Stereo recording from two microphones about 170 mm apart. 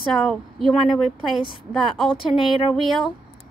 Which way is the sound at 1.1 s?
30° right (ahead or behind).